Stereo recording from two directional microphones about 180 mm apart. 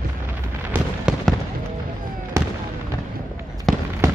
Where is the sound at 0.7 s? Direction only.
5° right (ahead or behind).